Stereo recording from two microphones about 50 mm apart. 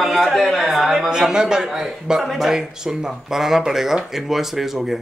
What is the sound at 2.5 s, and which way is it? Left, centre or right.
Speech, centre.